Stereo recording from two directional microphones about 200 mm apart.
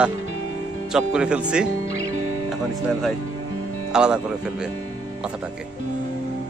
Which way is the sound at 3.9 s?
5° right (ahead or behind).